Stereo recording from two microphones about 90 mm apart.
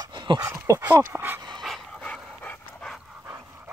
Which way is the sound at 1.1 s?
25° right (ahead or behind).